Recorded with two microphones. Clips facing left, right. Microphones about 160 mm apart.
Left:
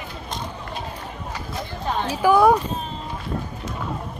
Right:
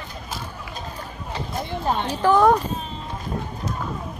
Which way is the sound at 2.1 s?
10° left (ahead or behind).